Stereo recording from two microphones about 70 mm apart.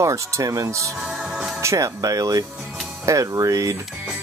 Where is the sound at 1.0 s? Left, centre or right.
Centre.